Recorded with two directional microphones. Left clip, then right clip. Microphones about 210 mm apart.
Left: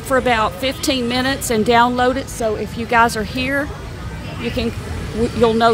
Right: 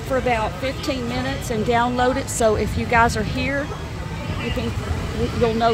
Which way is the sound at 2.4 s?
5° right (ahead or behind).